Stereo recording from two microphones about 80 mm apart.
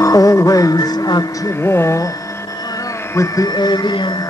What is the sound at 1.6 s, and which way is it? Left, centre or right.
Speech, left.